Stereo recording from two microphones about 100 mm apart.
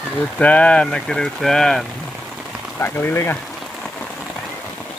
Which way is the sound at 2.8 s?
20° left (ahead or behind).